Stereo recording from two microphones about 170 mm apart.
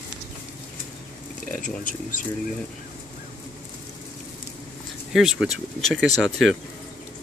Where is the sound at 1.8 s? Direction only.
50° left (ahead or behind).